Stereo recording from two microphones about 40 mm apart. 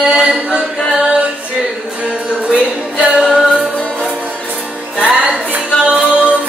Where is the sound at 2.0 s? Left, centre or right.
Right.